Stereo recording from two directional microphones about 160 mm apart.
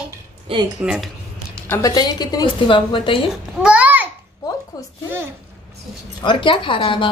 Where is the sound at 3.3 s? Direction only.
5° right (ahead or behind).